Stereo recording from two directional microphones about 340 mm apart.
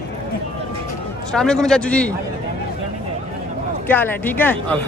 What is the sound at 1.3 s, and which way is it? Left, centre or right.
Speech, centre.